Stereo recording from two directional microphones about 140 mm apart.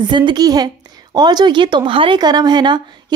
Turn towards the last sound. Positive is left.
turn(degrees=-30)  # may be behind; listen again after turning